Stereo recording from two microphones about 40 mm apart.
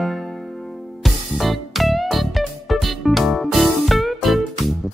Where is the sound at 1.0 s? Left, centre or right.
Centre.